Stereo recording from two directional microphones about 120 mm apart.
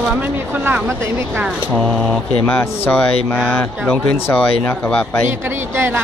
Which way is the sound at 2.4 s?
20° left (ahead or behind).